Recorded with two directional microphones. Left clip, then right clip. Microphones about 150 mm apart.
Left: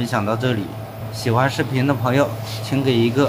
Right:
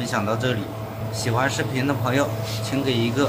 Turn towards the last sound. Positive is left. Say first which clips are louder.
# left 4 dB
turn(degrees=0)  # may be behind; listen again after turning